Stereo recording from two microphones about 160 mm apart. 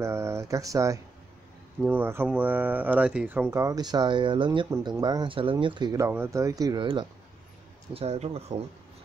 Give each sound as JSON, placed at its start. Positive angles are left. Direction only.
{"t": 0.0, "sound": "speech", "side_deg": -15}
{"t": 7.9, "sound": "speech", "side_deg": -40}